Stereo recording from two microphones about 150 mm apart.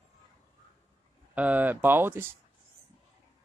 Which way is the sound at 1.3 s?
10° right (ahead or behind).